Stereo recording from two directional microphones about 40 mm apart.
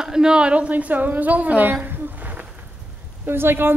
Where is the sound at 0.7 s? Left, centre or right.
Right.